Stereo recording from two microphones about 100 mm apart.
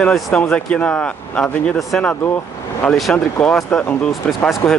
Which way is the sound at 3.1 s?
10° left (ahead or behind).